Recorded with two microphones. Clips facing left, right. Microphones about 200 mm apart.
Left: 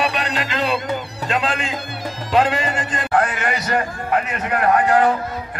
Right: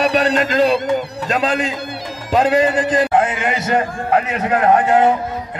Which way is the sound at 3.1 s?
20° right (ahead or behind).